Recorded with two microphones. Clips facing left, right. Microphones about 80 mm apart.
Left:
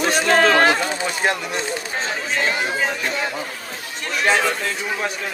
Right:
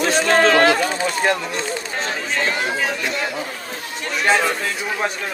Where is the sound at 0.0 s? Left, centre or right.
Centre.